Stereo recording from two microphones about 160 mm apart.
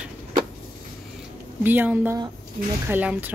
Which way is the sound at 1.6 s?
10° right (ahead or behind).